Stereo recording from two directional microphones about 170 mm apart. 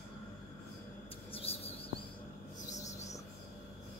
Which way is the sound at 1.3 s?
35° left (ahead or behind).